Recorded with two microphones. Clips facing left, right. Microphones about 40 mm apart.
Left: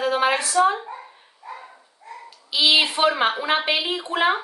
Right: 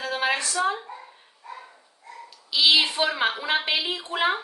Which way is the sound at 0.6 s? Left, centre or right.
Centre.